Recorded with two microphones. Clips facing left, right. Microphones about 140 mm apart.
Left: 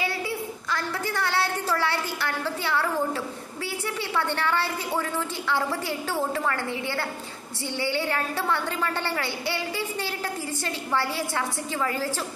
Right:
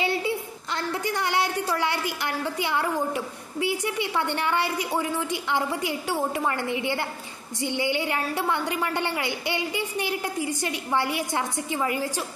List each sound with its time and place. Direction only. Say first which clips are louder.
0.0 s a woman's voice: right 3 dB; 20° right (ahead or behind)